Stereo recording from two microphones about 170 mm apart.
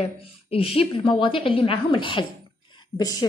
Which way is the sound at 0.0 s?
35° left (ahead or behind).